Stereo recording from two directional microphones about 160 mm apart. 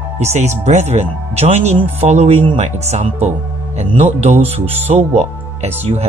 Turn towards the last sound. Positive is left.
turn(degrees=-45)  # may be behind; listen again after turning